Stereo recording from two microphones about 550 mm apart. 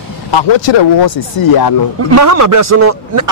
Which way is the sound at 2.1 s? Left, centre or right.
Right.